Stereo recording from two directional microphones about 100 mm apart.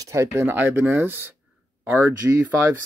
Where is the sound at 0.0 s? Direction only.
30° right (ahead or behind).